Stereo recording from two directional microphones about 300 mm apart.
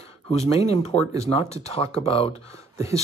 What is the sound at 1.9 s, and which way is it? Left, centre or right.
Speech, centre.